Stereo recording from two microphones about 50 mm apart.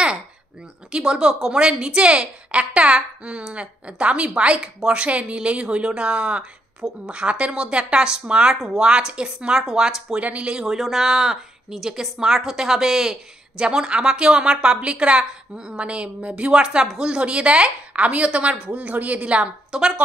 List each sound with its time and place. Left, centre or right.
0.9 s a woman's voice: centre
8.5 s a woman's voice: centre; by 16.5 s right
16.5 s a woman's voice: centre
19.7 s speech: centre